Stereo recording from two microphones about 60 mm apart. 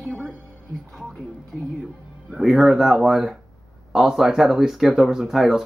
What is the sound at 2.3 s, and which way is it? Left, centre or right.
Speech, centre.